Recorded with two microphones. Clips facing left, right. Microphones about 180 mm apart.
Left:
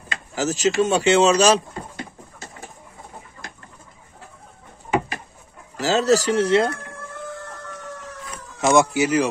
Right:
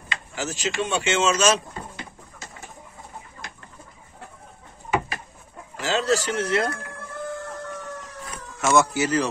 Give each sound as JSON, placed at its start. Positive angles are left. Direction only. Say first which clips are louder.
{"t": 0.1, "sound": "a sound", "louder": "left 6 dB", "side_deg": 40}
{"t": 5.8, "sound": "speech", "louder": "left 5 dB", "side_deg": 40}
{"t": 8.5, "sound": "speech", "louder": "left 3 dB", "side_deg": 15}